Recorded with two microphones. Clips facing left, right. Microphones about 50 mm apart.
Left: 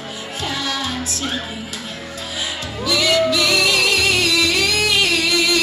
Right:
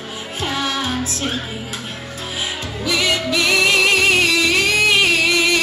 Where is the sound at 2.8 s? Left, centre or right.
Right.